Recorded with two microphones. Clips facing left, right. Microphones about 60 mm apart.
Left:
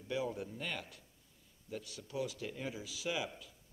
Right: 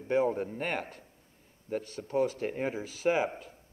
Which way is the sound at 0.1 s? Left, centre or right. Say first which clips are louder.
Right 10 dB; right.